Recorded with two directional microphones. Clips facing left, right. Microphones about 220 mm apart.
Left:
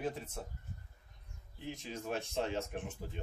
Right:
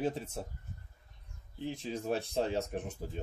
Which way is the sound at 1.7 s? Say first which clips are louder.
Right 5 dB; 35° right (ahead or behind).